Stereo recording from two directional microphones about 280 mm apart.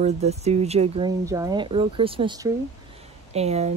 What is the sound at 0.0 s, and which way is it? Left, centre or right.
Speech, right.